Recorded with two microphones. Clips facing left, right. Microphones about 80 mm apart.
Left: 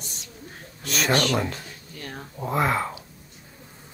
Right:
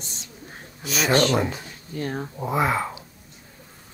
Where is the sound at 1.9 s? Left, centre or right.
Right.